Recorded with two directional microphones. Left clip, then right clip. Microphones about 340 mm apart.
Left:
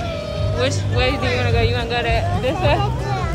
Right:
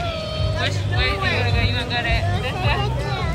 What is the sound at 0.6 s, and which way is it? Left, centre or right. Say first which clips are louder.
Vehicle: left 4 dB; centre.